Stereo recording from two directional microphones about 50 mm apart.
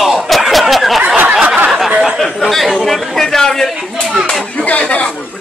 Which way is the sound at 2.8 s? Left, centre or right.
Centre.